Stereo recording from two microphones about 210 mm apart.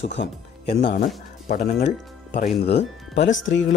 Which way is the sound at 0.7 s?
35° left (ahead or behind).